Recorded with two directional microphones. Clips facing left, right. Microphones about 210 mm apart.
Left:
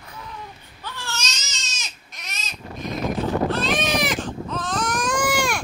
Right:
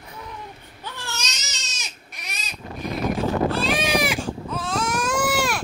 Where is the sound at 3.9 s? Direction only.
10° right (ahead or behind).